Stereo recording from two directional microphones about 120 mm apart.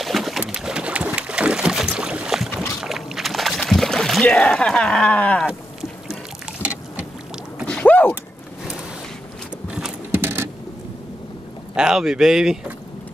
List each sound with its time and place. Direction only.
0.0 s a sound: centre (ahead or behind)
2.8 s boat: 5° right (ahead or behind)
5.5 s boat: centre (ahead or behind)
7.6 s rowboat: 10° left (ahead or behind)
9.7 s horse: 5° right (ahead or behind)
10.2 s a sound: 20° right (ahead or behind)
11.7 s speech: 5° right (ahead or behind)